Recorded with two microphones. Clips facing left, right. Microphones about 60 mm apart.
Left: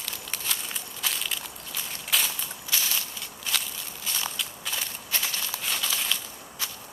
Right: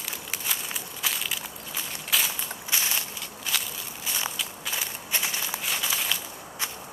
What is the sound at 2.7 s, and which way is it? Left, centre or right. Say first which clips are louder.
Walk: right 1 dB; right.